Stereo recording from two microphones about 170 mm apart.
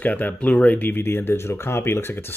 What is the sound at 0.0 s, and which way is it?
Speech, 10° left (ahead or behind).